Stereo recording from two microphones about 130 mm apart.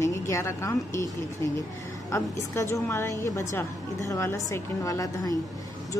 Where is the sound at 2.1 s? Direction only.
20° left (ahead or behind).